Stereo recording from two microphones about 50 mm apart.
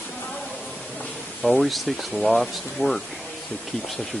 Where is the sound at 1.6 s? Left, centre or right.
Centre.